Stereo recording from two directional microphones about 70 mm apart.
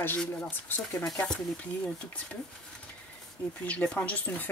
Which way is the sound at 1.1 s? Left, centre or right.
Centre.